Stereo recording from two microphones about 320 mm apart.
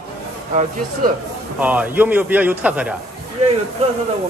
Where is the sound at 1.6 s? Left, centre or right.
Centre.